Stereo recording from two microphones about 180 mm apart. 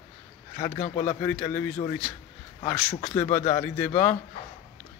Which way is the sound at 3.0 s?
20° left (ahead or behind).